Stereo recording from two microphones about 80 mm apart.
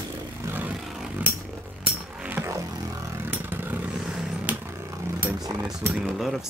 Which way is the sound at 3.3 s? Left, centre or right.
Right.